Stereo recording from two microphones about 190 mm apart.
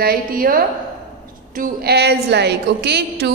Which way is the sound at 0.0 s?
50° right (ahead or behind).